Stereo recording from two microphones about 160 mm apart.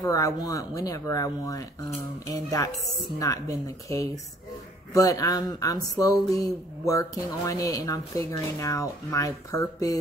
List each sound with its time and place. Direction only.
0.0 s speech: 25° left (ahead or behind)